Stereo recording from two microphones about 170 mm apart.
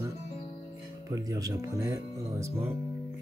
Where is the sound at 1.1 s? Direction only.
20° right (ahead or behind).